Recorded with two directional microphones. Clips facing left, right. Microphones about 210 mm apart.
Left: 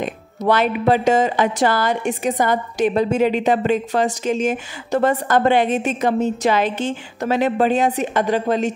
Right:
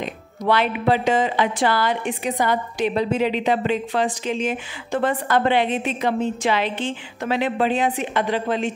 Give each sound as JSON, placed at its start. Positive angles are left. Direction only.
{"t": 0.5, "sound": "a woman's voice", "side_deg": 45}